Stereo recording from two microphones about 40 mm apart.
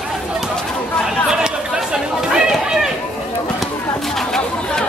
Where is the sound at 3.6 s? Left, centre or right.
Centre.